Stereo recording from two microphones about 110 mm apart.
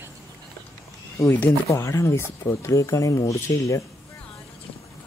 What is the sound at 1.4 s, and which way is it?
Speech, 25° left (ahead or behind).